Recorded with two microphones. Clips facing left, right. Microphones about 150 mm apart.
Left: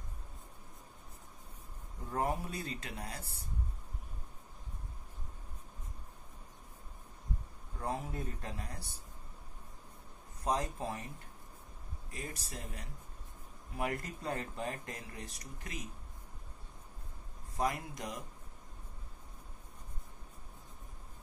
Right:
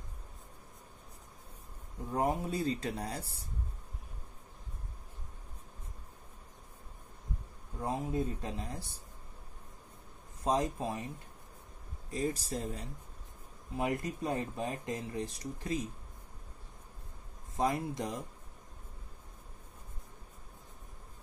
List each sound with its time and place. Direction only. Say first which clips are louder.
2.1 s speech: right 4 dB; 25° right (ahead or behind)
7.8 s speech: right 5 dB; 20° right (ahead or behind)
10.4 s speech: right 4 dB; 25° right (ahead or behind)
12.1 s speech: right 11 dB; 30° right (ahead or behind)
17.6 s speech: right 4 dB; 30° right (ahead or behind)